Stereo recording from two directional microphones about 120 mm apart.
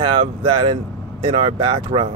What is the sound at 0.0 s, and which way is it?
Speech, 45° right (ahead or behind).